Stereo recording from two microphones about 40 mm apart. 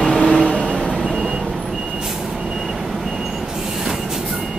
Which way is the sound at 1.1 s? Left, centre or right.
Centre.